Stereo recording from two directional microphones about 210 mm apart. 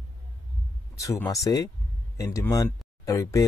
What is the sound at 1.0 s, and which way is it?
Speech, 15° left (ahead or behind).